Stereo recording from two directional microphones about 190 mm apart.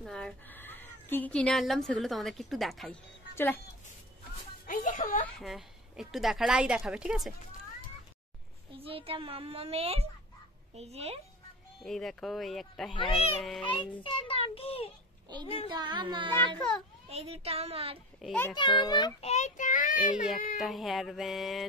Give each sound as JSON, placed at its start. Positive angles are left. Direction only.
{"t": 0.0, "sound": "a woman's voice", "side_deg": 5}
{"t": 4.6, "sound": "music", "side_deg": 45}
{"t": 5.2, "sound": "a woman's voice", "side_deg": 0}
{"t": 8.7, "sound": "a woman's voice", "side_deg": -30}
{"t": 11.8, "sound": "speech", "side_deg": 0}
{"t": 12.9, "sound": "a child's voice", "side_deg": 30}
{"t": 13.4, "sound": "speech", "side_deg": 0}
{"t": 14.0, "sound": "a child's voice", "side_deg": 30}
{"t": 15.7, "sound": "a woman's voice", "side_deg": -25}
{"t": 18.2, "sound": "a child's voice", "side_deg": 10}
{"t": 18.5, "sound": "a child's voice", "side_deg": 25}
{"t": 19.2, "sound": "child singing", "side_deg": 35}
{"t": 20.5, "sound": "speech", "side_deg": 0}